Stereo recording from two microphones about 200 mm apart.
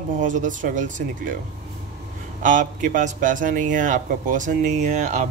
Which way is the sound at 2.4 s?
40° right (ahead or behind).